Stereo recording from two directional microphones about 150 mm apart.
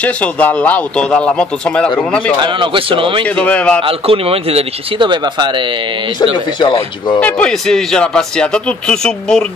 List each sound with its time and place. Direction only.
0.0 s speech: 10° left (ahead or behind)
2.4 s speech: 35° right (ahead or behind)
3.3 s speech: 10° left (ahead or behind)
3.8 s speech: 40° right (ahead or behind)
6.6 s speech: 30° left (ahead or behind)
7.2 s a man's voice: 10° left (ahead or behind)